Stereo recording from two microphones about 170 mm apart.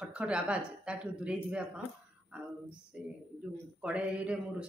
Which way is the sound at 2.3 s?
5° right (ahead or behind).